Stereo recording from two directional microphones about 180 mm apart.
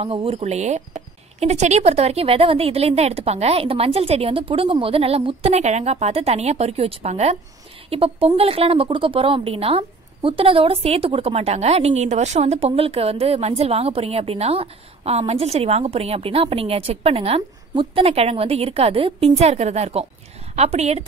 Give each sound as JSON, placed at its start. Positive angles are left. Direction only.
{"t": 0.0, "sound": "a woman's voice", "side_deg": -30}